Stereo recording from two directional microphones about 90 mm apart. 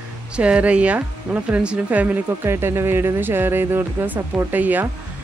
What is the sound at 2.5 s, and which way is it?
Speech, 25° right (ahead or behind).